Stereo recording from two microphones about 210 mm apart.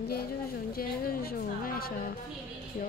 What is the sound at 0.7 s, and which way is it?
Speech, 45° left (ahead or behind).